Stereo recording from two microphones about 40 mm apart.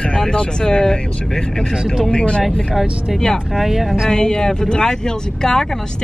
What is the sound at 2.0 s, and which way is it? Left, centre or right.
Speech, left.